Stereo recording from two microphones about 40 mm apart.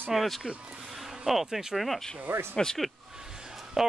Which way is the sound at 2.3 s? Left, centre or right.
Right.